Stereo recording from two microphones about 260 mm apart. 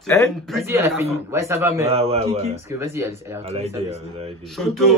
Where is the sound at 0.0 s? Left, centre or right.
Centre.